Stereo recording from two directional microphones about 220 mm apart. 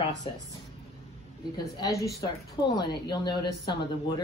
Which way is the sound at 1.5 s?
20° left (ahead or behind).